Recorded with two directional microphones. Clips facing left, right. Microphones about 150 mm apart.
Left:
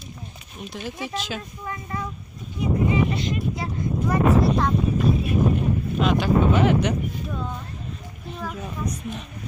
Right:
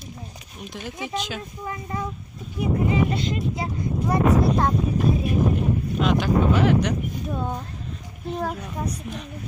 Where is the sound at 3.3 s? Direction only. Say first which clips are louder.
Even; 25° right (ahead or behind).